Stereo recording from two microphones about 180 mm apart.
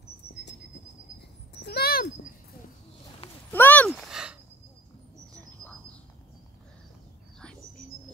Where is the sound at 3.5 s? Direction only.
10° left (ahead or behind).